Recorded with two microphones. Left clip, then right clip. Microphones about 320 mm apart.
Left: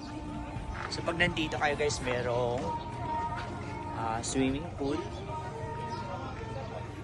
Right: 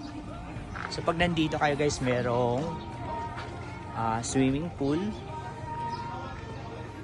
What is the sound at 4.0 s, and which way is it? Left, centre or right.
Speech, right.